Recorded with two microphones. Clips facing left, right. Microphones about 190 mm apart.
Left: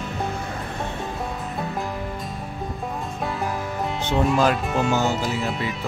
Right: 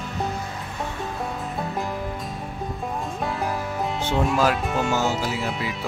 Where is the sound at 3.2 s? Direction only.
Centre (ahead or behind).